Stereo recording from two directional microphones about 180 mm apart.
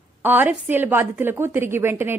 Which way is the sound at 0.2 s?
10° right (ahead or behind).